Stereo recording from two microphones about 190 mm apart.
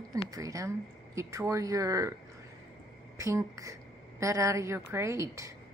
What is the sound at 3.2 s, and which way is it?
Speech, 15° right (ahead or behind).